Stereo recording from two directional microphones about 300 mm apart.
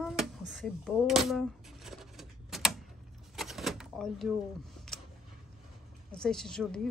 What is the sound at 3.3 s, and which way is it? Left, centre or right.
Door, centre.